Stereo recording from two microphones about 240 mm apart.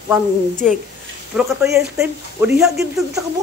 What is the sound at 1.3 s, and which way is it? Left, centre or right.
Speech, centre.